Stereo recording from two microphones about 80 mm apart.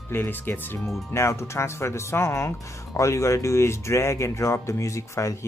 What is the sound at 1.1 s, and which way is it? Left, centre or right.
Speech, left.